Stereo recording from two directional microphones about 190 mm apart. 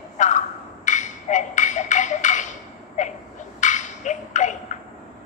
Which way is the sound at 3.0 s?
40° left (ahead or behind).